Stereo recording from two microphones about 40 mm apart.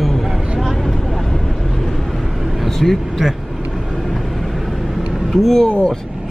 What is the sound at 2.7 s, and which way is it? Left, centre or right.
Speech, centre.